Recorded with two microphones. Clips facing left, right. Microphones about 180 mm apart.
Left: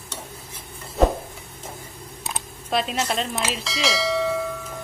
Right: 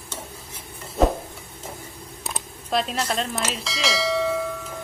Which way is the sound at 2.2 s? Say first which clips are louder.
Even; centre (ahead or behind).